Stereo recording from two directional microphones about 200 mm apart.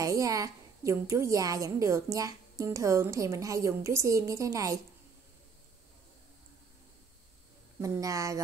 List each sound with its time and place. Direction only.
0.0 s a woman's voice: 15° right (ahead or behind)
7.8 s a woman's voice: 15° right (ahead or behind)